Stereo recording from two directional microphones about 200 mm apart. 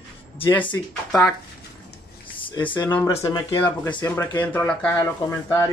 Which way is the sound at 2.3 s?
25° left (ahead or behind).